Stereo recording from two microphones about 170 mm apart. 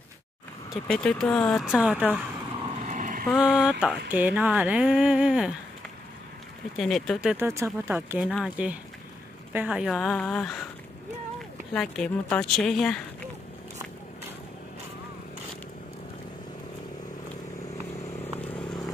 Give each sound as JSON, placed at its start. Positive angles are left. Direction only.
{"t": 0.8, "sound": "speech", "side_deg": 5}
{"t": 2.7, "sound": "vehicle", "side_deg": -45}
{"t": 3.4, "sound": "speech", "side_deg": -5}
{"t": 6.8, "sound": "speech", "side_deg": 0}
{"t": 7.3, "sound": "speech", "side_deg": -15}
{"t": 11.7, "sound": "speech", "side_deg": 5}
{"t": 18.4, "sound": "vehicle", "side_deg": 10}